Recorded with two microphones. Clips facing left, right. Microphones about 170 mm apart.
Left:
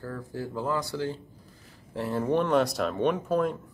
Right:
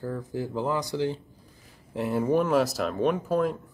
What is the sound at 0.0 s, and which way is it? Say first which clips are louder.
Speech: right 4 dB; 15° right (ahead or behind).